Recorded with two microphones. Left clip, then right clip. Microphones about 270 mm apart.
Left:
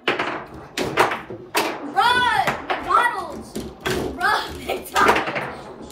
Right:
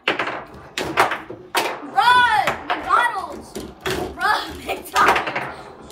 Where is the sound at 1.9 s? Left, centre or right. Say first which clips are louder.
Right 3 dB; right.